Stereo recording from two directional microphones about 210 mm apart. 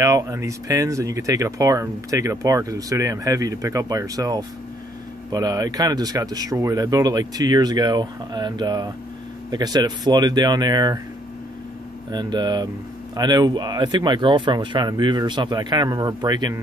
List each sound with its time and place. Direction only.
0.0 s speech: 15° right (ahead or behind)
12.1 s speech: 20° right (ahead or behind)